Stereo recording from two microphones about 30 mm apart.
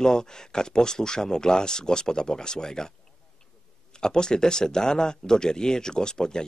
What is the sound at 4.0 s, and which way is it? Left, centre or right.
Speech, left.